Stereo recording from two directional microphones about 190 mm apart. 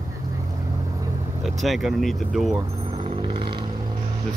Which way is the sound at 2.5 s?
30° right (ahead or behind).